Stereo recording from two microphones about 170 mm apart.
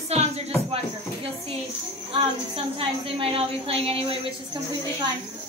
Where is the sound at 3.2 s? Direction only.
35° right (ahead or behind).